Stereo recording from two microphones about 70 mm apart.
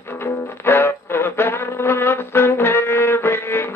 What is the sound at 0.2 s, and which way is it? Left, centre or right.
Music, left.